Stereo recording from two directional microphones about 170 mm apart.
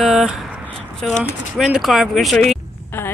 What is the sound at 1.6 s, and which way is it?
Speech, centre (ahead or behind).